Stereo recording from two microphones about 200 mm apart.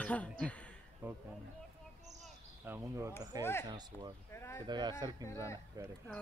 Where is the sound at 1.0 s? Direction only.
10° right (ahead or behind).